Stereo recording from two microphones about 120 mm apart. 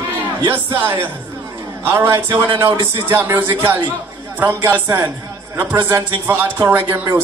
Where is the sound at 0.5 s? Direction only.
15° right (ahead or behind).